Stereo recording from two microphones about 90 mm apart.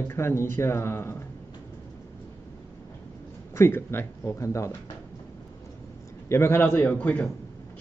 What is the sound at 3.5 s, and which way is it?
Speech, 30° left (ahead or behind).